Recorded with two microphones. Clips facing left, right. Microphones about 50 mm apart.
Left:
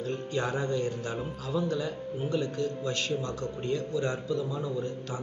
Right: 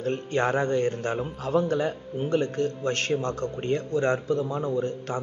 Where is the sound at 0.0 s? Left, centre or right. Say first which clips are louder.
Right 6 dB; right.